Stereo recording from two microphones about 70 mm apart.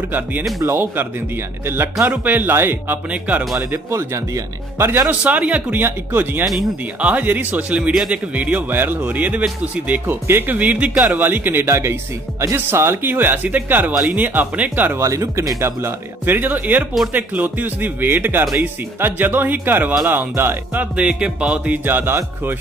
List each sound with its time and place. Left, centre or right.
0.1 s speech: right
1.7 s speech: right
3.1 s speech: right
3.9 s speech: right
5.2 s speech: centre
15.0 s speech: right
16.3 s speech: right
21.8 s speech: right